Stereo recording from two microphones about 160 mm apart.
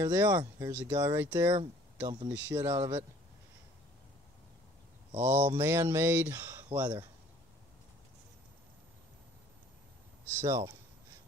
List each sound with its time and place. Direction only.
0.0 s speech: 25° right (ahead or behind)
5.2 s speech: 10° right (ahead or behind)
10.3 s speech: 20° right (ahead or behind)